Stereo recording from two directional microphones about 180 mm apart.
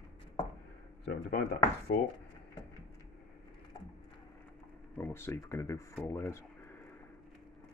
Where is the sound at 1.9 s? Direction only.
65° left (ahead or behind).